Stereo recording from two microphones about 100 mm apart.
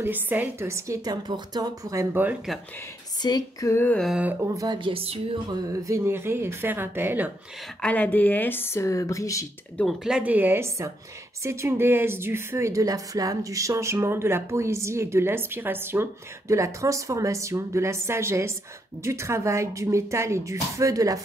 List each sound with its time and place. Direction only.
0.0 s a woman's voice: 20° right (ahead or behind)
0.7 s a woman's voice: 30° right (ahead or behind)
3.2 s a sound: 45° left (ahead or behind)
3.6 s speech: 25° left (ahead or behind)
4.1 s a woman's voice: 15° right (ahead or behind)
4.4 s a woman's voice: 35° right (ahead or behind)
4.7 s a sound: 65° right (ahead or behind)
5.5 s a woman's voice: 30° right (ahead or behind)
7.8 s speech: 15° left (ahead or behind); by 9.5 s 35° left (ahead or behind)
10.0 s a woman's voice: 10° right (ahead or behind); by 21.2 s 35° right (ahead or behind)